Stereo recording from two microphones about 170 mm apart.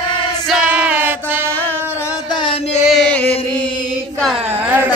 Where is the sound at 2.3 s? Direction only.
30° left (ahead or behind).